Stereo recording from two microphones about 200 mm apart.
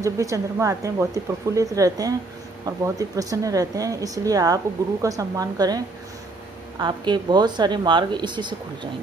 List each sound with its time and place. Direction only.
0.0 s a woman's voice: 15° right (ahead or behind)